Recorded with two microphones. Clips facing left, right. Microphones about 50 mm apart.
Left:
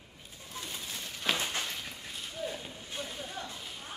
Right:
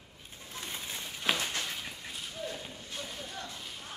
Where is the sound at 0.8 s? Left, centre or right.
Centre.